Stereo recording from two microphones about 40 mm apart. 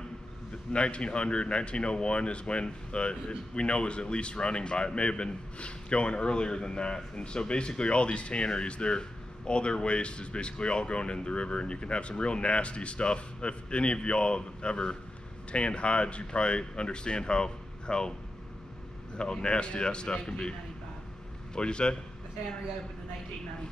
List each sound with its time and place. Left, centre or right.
0.7 s speech: left
19.1 s speech: left
21.5 s speech: left